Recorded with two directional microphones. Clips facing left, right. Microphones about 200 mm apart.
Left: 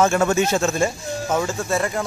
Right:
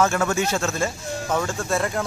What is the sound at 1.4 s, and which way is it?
Speech, centre (ahead or behind).